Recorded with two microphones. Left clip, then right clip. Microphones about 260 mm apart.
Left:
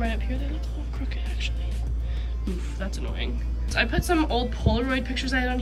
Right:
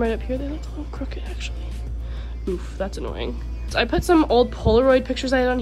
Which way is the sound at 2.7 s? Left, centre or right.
Centre.